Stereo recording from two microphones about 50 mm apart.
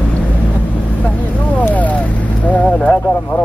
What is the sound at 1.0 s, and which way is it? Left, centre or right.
Vehicle, left.